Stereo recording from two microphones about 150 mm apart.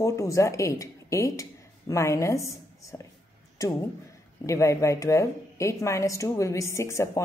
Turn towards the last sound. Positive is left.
turn(degrees=20)  # may be behind; listen again after turning